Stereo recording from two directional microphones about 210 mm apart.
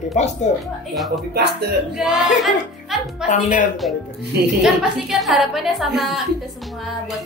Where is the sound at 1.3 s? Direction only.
50° right (ahead or behind).